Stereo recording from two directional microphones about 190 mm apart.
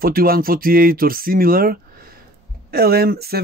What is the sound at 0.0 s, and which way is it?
Speech, 50° right (ahead or behind).